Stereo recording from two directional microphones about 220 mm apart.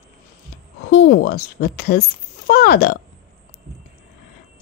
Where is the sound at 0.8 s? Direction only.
50° left (ahead or behind).